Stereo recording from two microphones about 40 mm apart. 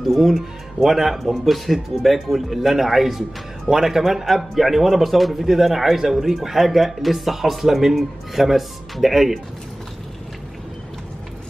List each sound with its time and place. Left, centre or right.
0.1 s speech: centre